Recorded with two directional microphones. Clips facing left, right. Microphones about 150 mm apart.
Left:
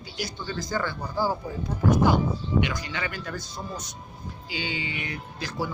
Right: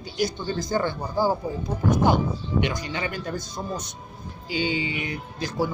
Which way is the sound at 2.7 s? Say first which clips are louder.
Right 3 dB; 20° right (ahead or behind).